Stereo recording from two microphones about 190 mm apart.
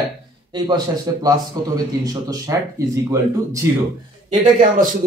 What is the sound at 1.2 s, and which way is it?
Speech, 20° right (ahead or behind).